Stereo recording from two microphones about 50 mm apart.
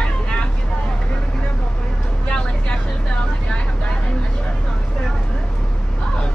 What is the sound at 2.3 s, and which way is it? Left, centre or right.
Vehicle, left.